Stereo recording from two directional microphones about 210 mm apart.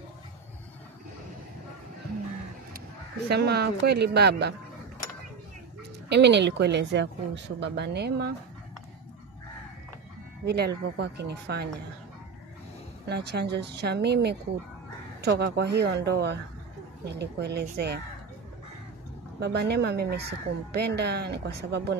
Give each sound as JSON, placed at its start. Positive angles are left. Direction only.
{"t": 3.3, "sound": "speech", "side_deg": -50}
{"t": 6.0, "sound": "speech", "side_deg": -55}
{"t": 10.4, "sound": "speech", "side_deg": -50}
{"t": 13.1, "sound": "speech", "side_deg": -50}
{"t": 19.4, "sound": "speech", "side_deg": -55}